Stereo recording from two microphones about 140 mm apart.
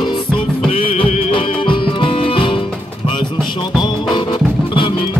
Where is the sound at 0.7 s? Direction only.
40° left (ahead or behind).